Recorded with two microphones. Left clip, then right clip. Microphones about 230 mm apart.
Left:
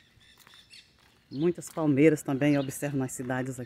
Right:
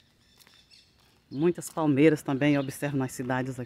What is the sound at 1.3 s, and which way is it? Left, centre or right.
Speech, centre.